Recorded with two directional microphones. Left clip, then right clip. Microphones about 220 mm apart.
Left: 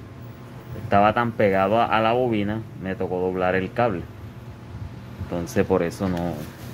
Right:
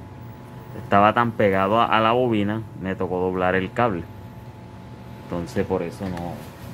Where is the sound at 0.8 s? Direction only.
10° right (ahead or behind).